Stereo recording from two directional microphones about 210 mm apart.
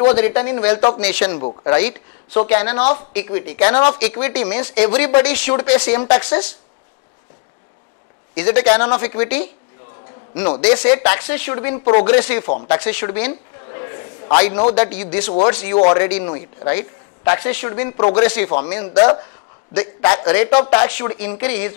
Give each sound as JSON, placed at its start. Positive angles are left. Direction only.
{"t": 0.1, "sound": "speech", "side_deg": 10}
{"t": 8.4, "sound": "speech", "side_deg": 10}
{"t": 12.6, "sound": "a sound", "side_deg": 10}
{"t": 14.8, "sound": "speech", "side_deg": 10}
{"t": 18.2, "sound": "a man's voice", "side_deg": 10}